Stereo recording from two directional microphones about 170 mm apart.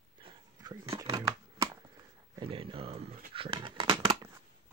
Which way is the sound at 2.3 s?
30° right (ahead or behind).